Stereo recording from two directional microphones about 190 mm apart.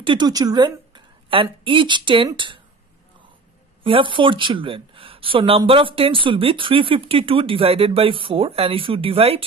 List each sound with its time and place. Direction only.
0.0 s a woman's voice: 25° right (ahead or behind)
3.8 s speech: 25° right (ahead or behind)